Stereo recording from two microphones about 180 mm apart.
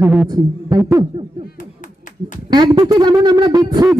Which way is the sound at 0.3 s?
20° right (ahead or behind).